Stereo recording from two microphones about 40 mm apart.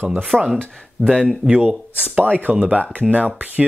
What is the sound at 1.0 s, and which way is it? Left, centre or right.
Speech, right.